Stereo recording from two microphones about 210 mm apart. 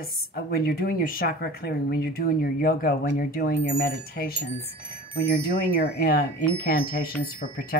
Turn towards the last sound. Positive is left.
turn(degrees=45)  # may be behind; listen again after turning